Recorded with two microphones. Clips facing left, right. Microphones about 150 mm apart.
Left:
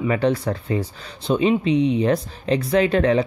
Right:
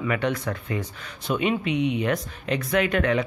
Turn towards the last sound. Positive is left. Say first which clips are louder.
# left 5 dB
turn(degrees=30)  # may be behind; listen again after turning